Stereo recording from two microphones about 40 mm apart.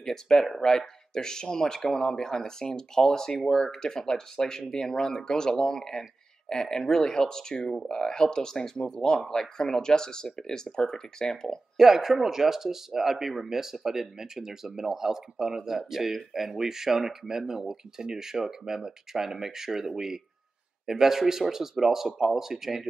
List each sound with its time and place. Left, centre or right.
0.0 s speech: centre
11.7 s speech: centre